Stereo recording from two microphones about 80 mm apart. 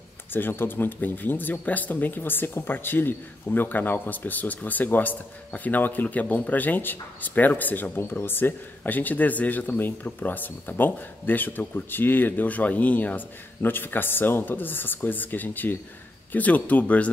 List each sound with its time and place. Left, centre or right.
0.3 s speech: left